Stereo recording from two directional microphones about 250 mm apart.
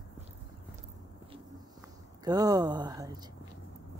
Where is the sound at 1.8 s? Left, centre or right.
Centre.